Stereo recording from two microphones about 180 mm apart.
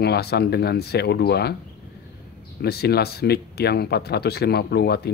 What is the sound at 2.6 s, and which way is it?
Speech, 60° left (ahead or behind).